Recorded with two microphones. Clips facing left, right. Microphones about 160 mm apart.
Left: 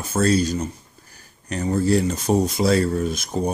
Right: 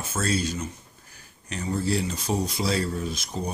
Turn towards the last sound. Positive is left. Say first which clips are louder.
# left 7 dB
turn(degrees=50)  # may be behind; listen again after turning